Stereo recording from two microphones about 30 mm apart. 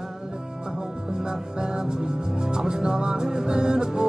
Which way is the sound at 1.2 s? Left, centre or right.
Right.